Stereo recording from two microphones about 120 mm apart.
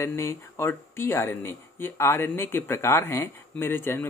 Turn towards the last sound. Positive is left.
turn(degrees=20)  # may be behind; listen again after turning